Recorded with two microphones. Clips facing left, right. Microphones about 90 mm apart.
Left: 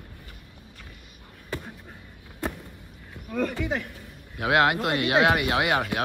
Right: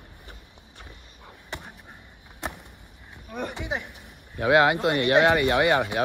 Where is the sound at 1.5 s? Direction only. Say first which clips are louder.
Left 4 dB; 20° right (ahead or behind).